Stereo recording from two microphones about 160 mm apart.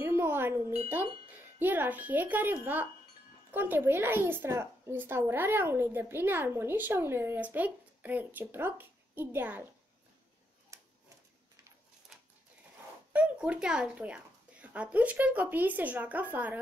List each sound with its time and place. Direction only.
0.0 s wind chime: 15° right (ahead or behind)
1.6 s a woman's voice: 10° right (ahead or behind)
10.7 s tick-tock: 20° right (ahead or behind)
12.1 s a sound: 5° right (ahead or behind)
13.1 s a woman's voice: 10° right (ahead or behind)